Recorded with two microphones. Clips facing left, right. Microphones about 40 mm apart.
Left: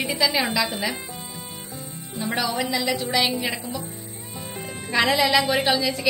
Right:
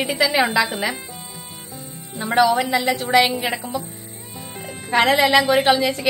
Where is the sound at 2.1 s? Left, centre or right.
Right.